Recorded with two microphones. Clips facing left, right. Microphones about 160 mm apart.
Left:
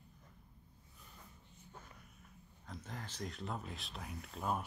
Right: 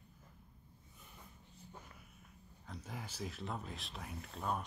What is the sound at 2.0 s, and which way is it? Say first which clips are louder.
Speech: even; centre (ahead or behind).